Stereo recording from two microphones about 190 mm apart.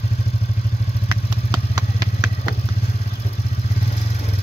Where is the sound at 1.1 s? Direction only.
20° right (ahead or behind).